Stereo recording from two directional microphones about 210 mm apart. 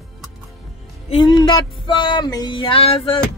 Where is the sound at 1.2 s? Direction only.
20° left (ahead or behind).